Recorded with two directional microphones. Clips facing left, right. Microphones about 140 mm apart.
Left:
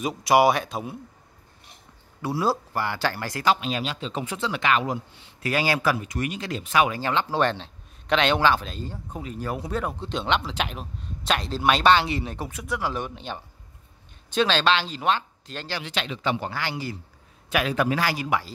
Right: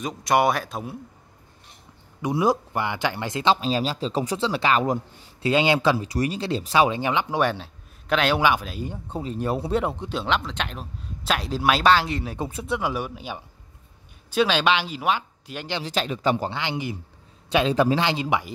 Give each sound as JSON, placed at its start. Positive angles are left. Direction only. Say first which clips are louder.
{"t": 0.0, "sound": "speech", "louder": "left 2 dB", "side_deg": 5}
{"t": 2.2, "sound": "a man's voice", "louder": "right 3 dB", "side_deg": -15}
{"t": 3.6, "sound": "speech", "louder": "right 4 dB", "side_deg": -35}
{"t": 5.4, "sound": "speech", "louder": "right 4 dB", "side_deg": -20}
{"t": 7.0, "sound": "a man's voice", "louder": "right 1 dB", "side_deg": -15}
{"t": 9.1, "sound": "speech", "louder": "right 5 dB", "side_deg": -30}
{"t": 10.0, "sound": "speech", "louder": "even", "side_deg": 0}
{"t": 12.4, "sound": "speech", "louder": "right 3 dB", "side_deg": -25}
{"t": 12.9, "sound": "a man's voice", "louder": "right 1 dB", "side_deg": -10}
{"t": 15.8, "sound": "speech", "louder": "right 5 dB", "side_deg": -40}
{"t": 16.4, "sound": "speech", "louder": "right 2 dB", "side_deg": -20}